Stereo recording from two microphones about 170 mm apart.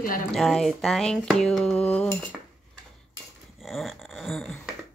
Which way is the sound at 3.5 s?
Centre (ahead or behind).